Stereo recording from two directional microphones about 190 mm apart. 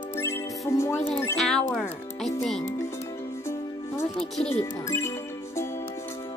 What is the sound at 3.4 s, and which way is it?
Music, 15° left (ahead or behind).